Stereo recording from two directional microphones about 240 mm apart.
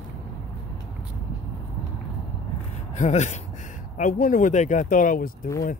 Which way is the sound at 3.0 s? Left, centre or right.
Left.